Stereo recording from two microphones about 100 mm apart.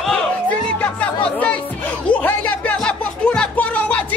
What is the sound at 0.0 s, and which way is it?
Music, 10° left (ahead or behind).